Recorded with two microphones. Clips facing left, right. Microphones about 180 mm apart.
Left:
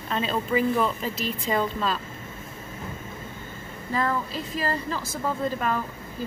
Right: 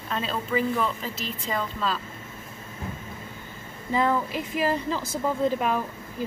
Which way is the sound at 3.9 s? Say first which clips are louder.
Right 3 dB; 15° right (ahead or behind).